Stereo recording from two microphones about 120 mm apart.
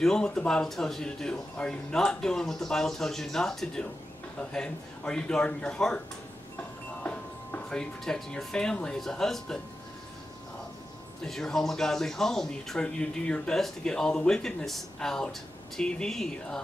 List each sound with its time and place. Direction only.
0.0 s speech: 5° left (ahead or behind)
7.0 s speech: 15° left (ahead or behind)
11.2 s speech: 5° left (ahead or behind)